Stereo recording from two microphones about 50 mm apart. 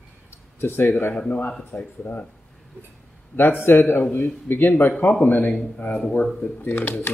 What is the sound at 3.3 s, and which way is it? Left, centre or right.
Speech, left.